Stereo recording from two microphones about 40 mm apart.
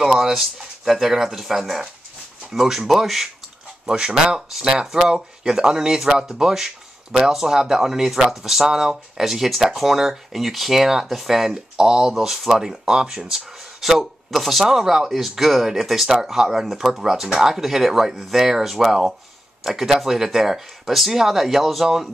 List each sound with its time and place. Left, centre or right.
0.0 s speech: centre
3.8 s speech: centre